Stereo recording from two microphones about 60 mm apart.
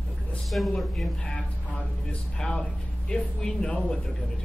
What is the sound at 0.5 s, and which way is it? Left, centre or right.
Speech, centre.